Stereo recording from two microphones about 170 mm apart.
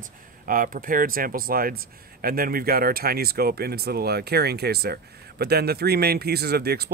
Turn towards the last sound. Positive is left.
turn(degrees=-70)  # may be behind; listen again after turning